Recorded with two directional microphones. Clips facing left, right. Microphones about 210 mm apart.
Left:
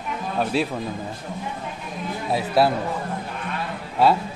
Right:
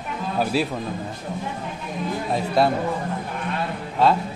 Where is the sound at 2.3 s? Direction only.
5° left (ahead or behind).